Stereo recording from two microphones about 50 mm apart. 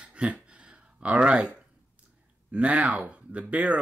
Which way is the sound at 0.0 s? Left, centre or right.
Right.